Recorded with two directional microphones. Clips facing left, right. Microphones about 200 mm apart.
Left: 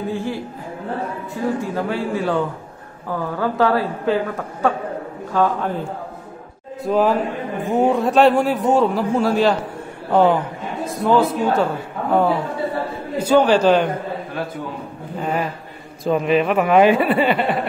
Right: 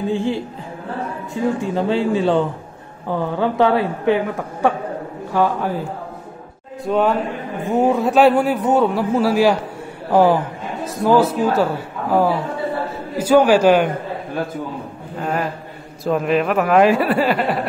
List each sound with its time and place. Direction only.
0.1 s a woman's voice: 25° right (ahead or behind)
1.6 s a woman's voice: 25° right (ahead or behind)
15.1 s a man's voice: centre (ahead or behind)